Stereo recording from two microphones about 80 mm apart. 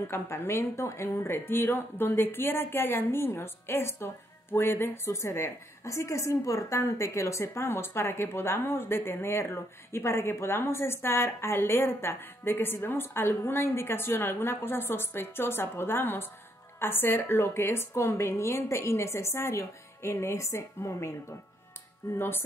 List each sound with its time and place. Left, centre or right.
0.1 s a woman's voice: left
22.1 s a woman's voice: left